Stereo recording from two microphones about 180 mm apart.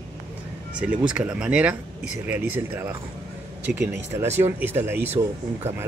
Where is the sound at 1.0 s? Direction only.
5° right (ahead or behind).